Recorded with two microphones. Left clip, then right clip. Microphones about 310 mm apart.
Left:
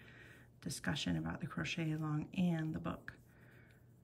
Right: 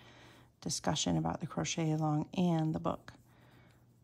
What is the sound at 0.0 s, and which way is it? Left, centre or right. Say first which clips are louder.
Speech: right 1 dB; centre.